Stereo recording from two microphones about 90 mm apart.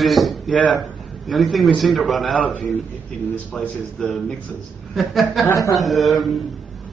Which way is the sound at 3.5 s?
5° left (ahead or behind).